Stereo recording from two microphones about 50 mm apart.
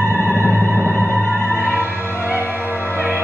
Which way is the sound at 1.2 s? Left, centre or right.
Left.